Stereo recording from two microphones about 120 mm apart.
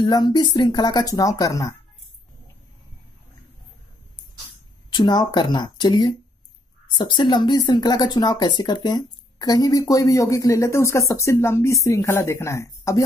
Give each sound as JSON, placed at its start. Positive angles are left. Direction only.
{"t": 0.0, "sound": "speech", "side_deg": 35}
{"t": 4.9, "sound": "speech", "side_deg": 35}